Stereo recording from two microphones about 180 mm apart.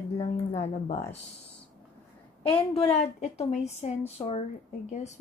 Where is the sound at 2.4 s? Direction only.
30° left (ahead or behind).